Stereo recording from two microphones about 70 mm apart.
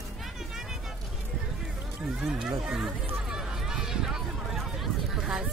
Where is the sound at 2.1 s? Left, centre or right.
Centre.